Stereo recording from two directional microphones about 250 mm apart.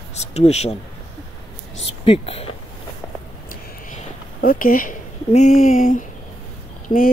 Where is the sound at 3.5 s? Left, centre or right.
Left.